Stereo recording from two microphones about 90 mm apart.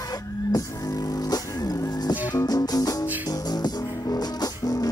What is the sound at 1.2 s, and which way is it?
Music, 45° left (ahead or behind).